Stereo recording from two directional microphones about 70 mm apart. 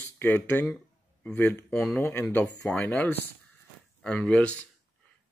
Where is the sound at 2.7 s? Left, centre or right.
Centre.